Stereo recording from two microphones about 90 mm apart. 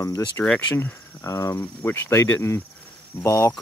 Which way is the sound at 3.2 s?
35° left (ahead or behind).